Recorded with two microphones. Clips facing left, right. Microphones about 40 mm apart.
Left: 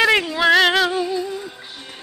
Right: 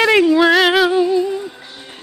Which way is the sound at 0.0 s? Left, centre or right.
Centre.